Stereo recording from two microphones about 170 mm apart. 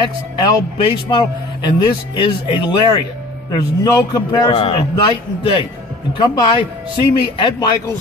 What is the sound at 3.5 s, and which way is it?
Speech, 20° left (ahead or behind).